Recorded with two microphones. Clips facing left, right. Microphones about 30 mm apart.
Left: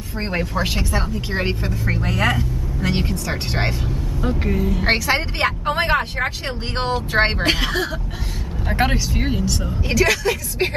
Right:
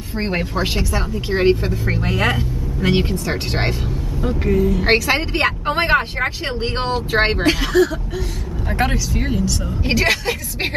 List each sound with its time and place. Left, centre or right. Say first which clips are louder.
0.2 s speech: right 1 dB; centre
0.7 s speech: right 1 dB; centre
2.0 s speech: even; right
4.2 s speech: right 4 dB; centre
4.8 s speech: right 2 dB; centre
7.4 s speech: right 4 dB; centre
9.8 s a woman's voice: even; right